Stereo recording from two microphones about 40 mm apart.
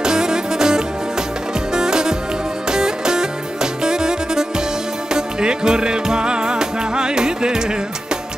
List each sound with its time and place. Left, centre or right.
0.0 s music: centre